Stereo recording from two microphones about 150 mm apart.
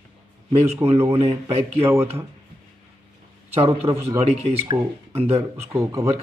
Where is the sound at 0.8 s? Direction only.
20° right (ahead or behind).